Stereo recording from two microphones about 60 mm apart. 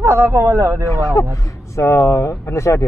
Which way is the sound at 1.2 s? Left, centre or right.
Left.